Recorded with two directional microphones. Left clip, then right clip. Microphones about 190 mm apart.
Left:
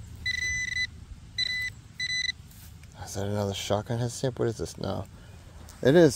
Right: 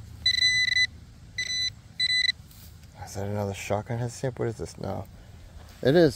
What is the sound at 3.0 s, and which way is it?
Speech, 10° left (ahead or behind).